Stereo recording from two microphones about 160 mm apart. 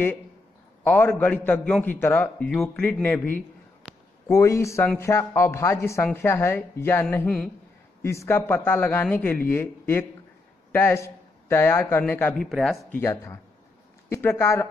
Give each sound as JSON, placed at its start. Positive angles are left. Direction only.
{"t": 0.8, "sound": "a man's voice", "side_deg": 10}
{"t": 12.4, "sound": "speech", "side_deg": 0}
{"t": 12.9, "sound": "a man's voice", "side_deg": 15}